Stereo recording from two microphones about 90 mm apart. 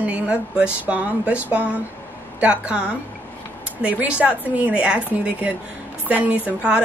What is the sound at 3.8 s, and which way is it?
A woman's voice, 15° right (ahead or behind).